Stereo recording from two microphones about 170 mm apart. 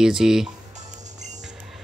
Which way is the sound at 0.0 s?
5° right (ahead or behind).